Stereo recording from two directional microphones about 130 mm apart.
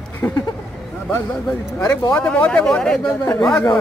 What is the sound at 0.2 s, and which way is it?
Speech, 10° left (ahead or behind).